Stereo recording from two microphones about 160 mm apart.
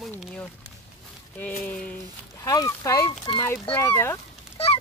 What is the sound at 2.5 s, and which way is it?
Speech, 20° left (ahead or behind).